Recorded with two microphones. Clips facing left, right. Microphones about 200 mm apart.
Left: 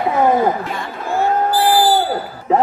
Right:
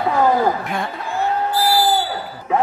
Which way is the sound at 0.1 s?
20° left (ahead or behind).